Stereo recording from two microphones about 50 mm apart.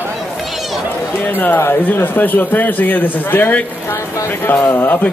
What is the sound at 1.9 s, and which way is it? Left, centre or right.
Speech, left.